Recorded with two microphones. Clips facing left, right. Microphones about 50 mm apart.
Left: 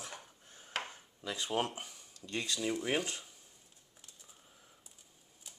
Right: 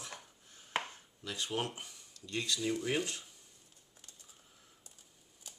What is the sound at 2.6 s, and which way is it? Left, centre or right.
Speech, centre.